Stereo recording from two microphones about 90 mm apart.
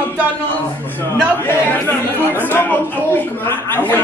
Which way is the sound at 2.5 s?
20° left (ahead or behind).